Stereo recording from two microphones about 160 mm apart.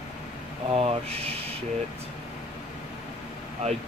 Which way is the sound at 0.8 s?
40° right (ahead or behind).